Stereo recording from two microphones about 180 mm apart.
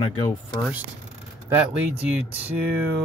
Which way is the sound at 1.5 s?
5° right (ahead or behind).